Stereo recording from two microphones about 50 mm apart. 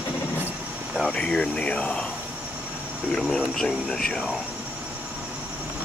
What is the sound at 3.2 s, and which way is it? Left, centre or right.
Speech, centre.